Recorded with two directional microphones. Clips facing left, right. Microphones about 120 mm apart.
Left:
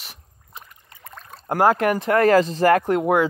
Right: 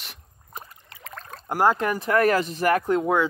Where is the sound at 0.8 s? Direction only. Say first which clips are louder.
Right 2 dB; 90° right.